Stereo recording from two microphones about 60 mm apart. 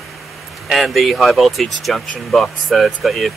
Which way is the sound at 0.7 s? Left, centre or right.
Centre.